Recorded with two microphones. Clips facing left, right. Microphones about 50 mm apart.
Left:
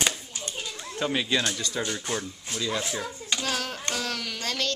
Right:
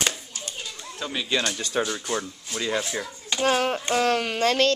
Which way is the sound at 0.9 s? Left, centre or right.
Centre.